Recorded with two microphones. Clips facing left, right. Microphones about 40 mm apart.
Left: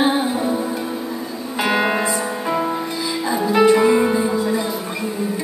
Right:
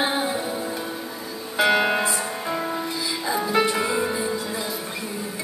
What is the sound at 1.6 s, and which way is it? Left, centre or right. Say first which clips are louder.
Music: left 1 dB; centre.